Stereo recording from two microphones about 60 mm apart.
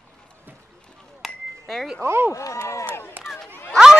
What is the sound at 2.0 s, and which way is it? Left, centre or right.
Speech, right.